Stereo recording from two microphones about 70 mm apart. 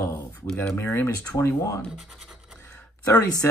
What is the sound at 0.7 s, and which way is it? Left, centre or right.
Speech, left.